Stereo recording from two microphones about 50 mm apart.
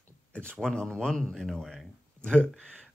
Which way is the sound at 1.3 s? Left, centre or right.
Centre.